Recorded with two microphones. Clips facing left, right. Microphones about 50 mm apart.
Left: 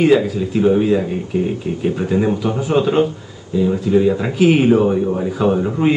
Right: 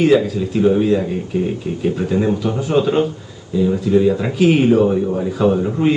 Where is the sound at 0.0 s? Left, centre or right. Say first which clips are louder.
Even; centre.